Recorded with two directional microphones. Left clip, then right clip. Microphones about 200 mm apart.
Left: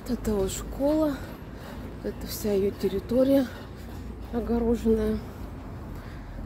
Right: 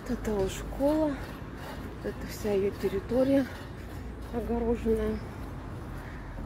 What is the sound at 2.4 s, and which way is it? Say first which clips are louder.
Speech: left 2 dB; 15° left (ahead or behind).